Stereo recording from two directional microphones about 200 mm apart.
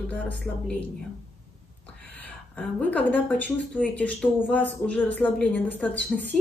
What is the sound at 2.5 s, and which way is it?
Speech, 5° left (ahead or behind).